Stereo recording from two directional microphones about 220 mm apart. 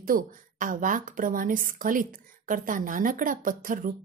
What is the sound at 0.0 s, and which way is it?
A woman's voice, 40° right (ahead or behind).